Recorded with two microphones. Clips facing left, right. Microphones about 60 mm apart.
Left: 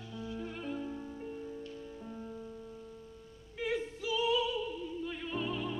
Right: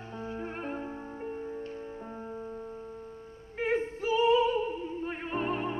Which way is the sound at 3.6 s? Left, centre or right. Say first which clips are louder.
Right 6 dB; right.